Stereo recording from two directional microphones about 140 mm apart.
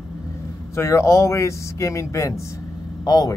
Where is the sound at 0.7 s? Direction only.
20° left (ahead or behind).